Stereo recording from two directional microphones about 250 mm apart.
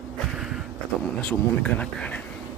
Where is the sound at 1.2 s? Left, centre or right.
Centre.